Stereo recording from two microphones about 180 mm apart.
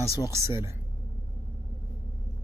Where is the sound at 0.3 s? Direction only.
15° right (ahead or behind).